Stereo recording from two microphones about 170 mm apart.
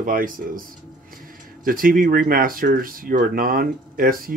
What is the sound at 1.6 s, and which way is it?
Speech, 55° right (ahead or behind).